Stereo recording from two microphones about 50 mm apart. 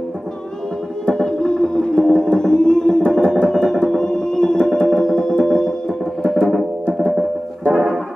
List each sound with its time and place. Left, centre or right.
1.0 s music: centre
6.4 s music: centre